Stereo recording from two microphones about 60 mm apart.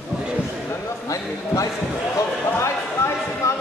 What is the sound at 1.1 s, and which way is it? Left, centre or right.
Basketball bounce, left.